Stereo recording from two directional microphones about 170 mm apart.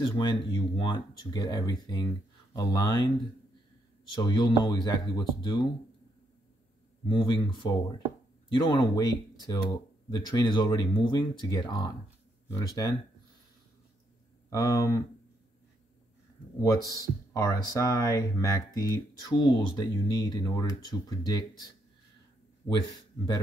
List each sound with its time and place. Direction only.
0.0 s speech: 25° left (ahead or behind)
4.1 s speech: 25° left (ahead or behind)
7.1 s speech: 30° left (ahead or behind)
14.5 s speech: 20° left (ahead or behind)
16.6 s speech: 20° left (ahead or behind)
22.7 s speech: 25° left (ahead or behind)